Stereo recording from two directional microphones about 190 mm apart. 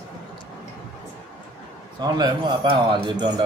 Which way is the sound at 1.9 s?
20° right (ahead or behind).